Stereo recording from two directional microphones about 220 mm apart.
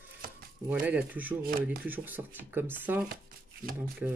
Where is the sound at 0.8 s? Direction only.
5° right (ahead or behind).